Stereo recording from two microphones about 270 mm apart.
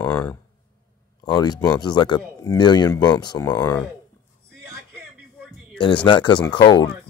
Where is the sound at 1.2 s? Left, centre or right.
Centre.